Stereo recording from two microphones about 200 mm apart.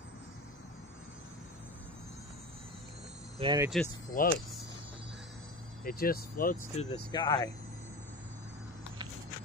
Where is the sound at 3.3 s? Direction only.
25° right (ahead or behind).